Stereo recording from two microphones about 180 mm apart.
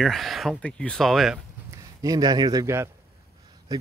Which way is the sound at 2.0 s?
20° right (ahead or behind).